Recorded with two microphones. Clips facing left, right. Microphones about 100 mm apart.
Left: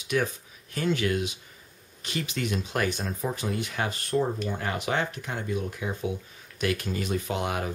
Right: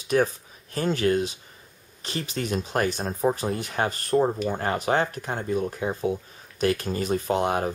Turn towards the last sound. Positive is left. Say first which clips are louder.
# right 6 dB
turn(degrees=-35)  # may be behind; listen again after turning